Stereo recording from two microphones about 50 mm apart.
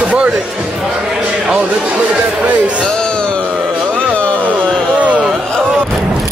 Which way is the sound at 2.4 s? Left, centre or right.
Right.